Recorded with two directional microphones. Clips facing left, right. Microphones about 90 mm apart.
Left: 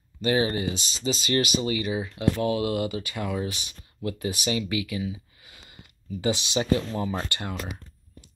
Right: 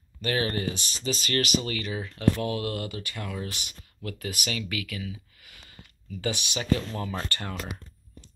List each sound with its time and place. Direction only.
0.2 s speech: 15° left (ahead or behind)
2.3 s speech: 5° left (ahead or behind)
4.0 s speech: 20° left (ahead or behind)